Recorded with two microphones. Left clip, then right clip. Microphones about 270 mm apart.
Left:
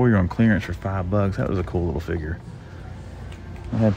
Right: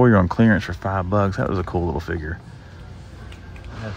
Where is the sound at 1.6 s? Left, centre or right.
Right.